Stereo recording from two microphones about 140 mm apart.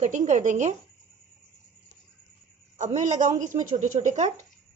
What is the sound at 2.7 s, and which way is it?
A woman's voice, 60° right (ahead or behind).